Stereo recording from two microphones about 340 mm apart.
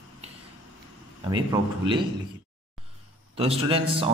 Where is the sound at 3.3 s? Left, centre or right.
Centre.